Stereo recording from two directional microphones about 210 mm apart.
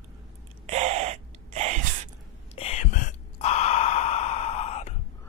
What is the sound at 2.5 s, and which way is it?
Sigh, 30° left (ahead or behind).